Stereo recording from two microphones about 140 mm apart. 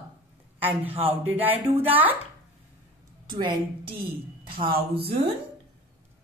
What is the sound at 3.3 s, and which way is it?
A woman's voice, 35° right (ahead or behind).